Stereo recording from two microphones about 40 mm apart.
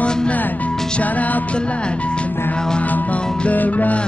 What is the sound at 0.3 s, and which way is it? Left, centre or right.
Music, left.